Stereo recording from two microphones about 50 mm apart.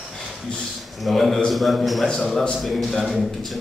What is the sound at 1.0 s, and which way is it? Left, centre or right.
A man's voice, centre.